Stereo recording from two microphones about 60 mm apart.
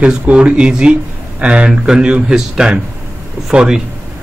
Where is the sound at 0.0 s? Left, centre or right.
Centre.